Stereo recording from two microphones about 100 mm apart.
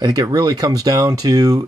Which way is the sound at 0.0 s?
40° right (ahead or behind).